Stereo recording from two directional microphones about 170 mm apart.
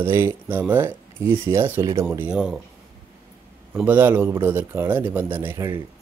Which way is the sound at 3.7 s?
10° right (ahead or behind).